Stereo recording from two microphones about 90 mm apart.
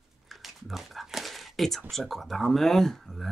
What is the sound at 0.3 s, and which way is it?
Speech, centre (ahead or behind).